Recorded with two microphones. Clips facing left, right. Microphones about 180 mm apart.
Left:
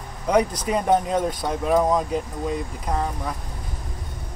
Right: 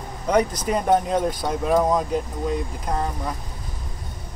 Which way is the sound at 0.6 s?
5° right (ahead or behind).